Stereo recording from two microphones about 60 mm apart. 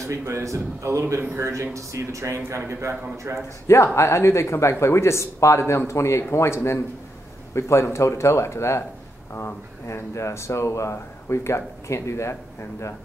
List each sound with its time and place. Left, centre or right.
0.0 s a man's voice: right
3.6 s speech: left